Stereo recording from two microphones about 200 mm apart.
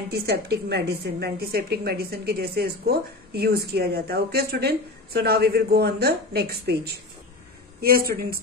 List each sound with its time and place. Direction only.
0.1 s a woman's voice: 55° right (ahead or behind)